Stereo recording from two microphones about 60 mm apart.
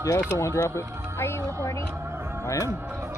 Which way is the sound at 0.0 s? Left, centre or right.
Left.